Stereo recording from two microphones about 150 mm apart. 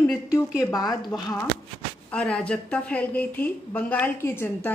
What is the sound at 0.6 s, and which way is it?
Speech, 25° left (ahead or behind).